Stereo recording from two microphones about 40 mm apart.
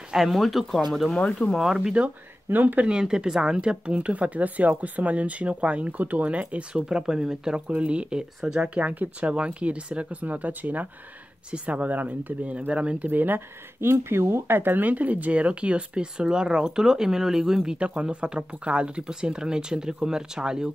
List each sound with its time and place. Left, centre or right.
0.1 s speech: centre
1.6 s speech: centre
2.5 s speech: right
3.0 s speech: centre; by 6.6 s right
6.7 s speech: right
7.6 s speech: right
10.2 s speech: right
13.1 s speech: right
13.7 s speech: right; by 17.7 s centre
17.7 s speech: right
19.0 s speech: centre